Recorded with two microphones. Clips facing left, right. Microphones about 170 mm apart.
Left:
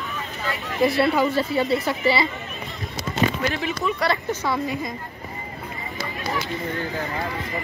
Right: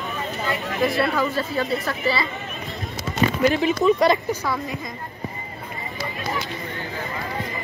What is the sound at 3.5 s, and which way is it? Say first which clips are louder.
Speech: right 7 dB; 20° right (ahead or behind).